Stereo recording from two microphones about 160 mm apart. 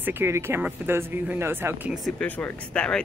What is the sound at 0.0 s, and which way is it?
Speech, 15° right (ahead or behind).